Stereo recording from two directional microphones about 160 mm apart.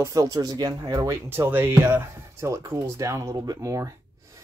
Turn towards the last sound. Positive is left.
turn(degrees=-20)  # may be behind; listen again after turning